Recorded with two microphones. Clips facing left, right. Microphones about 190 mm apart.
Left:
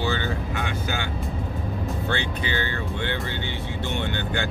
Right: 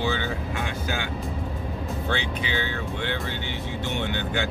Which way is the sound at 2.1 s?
Centre (ahead or behind).